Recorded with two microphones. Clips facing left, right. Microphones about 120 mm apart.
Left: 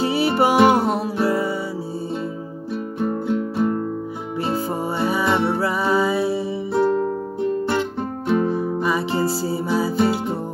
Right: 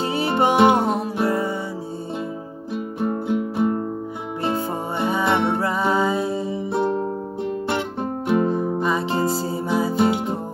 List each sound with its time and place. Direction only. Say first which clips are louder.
0.0 s music: left 2 dB; 20° right (ahead or behind)
3.3 s music: even; 15° right (ahead or behind)
8.3 s music: even; 15° right (ahead or behind)